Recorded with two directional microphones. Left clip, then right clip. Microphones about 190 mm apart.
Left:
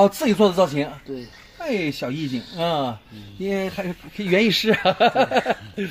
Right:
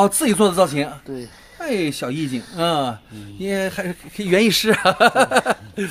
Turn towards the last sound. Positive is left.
turn(degrees=-5)  # may be behind; listen again after turning